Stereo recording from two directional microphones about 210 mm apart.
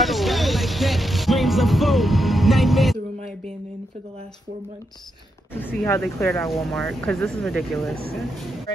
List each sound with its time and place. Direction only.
0.0 s music: centre (ahead or behind)
5.5 s speech: 10° left (ahead or behind)
6.4 s speech: centre (ahead or behind)